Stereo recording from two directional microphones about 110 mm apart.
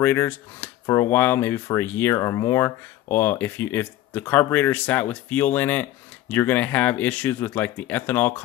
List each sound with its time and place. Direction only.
0.0 s speech: 20° left (ahead or behind)